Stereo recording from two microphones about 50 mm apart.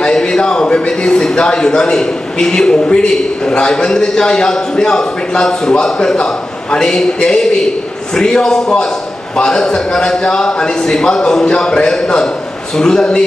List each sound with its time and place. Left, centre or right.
0.0 s a man's voice: centre